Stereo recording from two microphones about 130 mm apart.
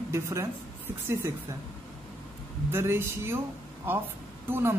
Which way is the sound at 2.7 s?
20° right (ahead or behind).